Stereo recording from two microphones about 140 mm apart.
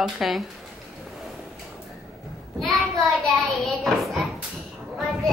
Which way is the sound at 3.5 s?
Centre (ahead or behind).